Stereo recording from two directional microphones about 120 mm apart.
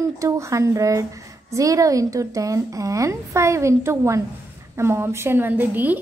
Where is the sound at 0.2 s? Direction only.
25° right (ahead or behind).